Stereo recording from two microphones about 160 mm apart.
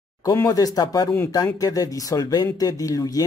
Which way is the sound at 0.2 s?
20° left (ahead or behind).